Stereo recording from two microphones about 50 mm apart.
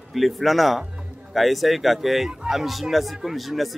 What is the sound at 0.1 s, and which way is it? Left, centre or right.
Speech, centre.